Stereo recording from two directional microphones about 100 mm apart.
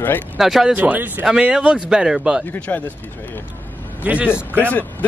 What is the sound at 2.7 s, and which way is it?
Speech, 20° left (ahead or behind).